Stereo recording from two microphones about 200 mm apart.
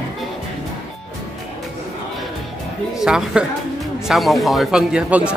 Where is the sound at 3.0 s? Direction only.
5° right (ahead or behind).